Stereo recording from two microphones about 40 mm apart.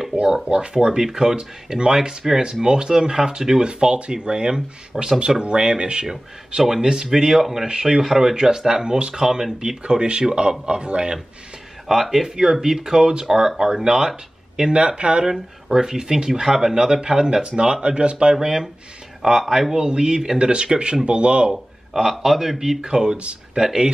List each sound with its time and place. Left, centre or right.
0.1 s speech: right
11.9 s speech: centre
14.7 s speech: right
15.2 s speech: centre
18.3 s speech: centre
21.5 s speech: centre
22.8 s speech: centre
23.1 s speech: right
23.6 s speech: centre